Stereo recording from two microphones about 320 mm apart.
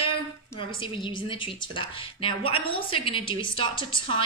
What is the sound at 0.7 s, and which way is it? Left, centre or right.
A woman's voice, centre.